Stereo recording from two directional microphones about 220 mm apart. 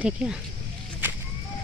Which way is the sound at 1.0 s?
10° right (ahead or behind).